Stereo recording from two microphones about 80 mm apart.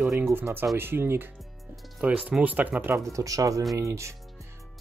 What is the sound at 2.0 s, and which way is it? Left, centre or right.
Speech, centre.